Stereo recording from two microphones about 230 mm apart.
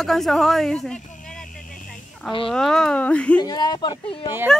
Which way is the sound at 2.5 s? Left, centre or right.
Centre.